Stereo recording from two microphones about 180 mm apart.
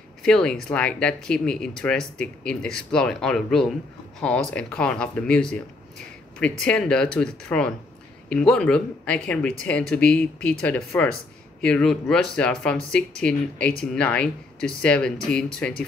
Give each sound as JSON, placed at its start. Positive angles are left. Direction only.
{"t": 0.2, "sound": "speech", "side_deg": 5}